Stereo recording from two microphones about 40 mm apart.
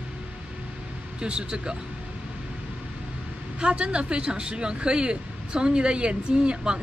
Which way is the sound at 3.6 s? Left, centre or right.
Right.